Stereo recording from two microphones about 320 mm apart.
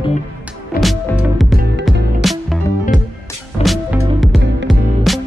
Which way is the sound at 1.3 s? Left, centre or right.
Centre.